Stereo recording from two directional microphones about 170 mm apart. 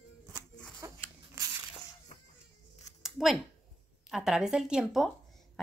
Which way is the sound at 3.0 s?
Centre (ahead or behind).